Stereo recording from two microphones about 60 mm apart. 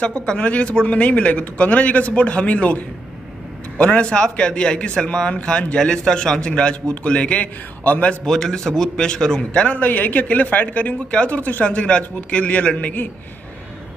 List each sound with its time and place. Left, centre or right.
0.0 s a man's voice: centre
8.3 s a man's voice: centre; by 13.1 s left